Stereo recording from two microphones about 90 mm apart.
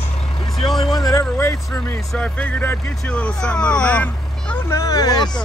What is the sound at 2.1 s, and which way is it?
Speech, 15° left (ahead or behind).